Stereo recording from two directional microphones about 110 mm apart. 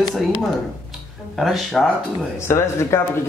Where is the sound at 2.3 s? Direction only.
25° left (ahead or behind).